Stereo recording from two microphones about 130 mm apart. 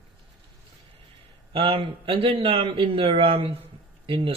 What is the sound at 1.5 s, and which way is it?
Speech, 45° right (ahead or behind).